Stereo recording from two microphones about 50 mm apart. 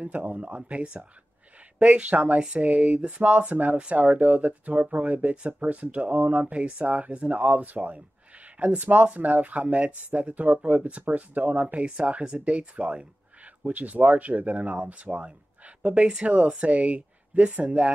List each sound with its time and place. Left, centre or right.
0.0 s speech: right